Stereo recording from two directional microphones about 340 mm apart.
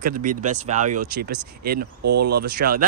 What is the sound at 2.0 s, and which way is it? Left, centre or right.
Speech, right.